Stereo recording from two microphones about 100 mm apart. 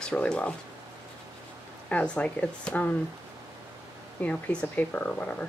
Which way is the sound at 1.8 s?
10° left (ahead or behind).